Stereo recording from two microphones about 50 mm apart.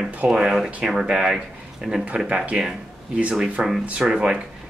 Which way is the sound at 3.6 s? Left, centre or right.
Right.